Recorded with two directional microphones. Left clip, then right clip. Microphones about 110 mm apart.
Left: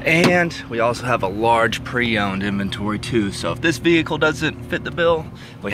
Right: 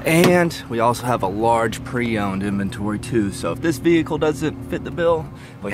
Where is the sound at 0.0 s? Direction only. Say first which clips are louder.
Even; 90° right.